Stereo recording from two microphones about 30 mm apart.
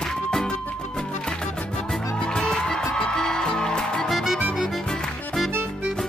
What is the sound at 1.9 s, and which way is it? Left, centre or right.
Music, centre.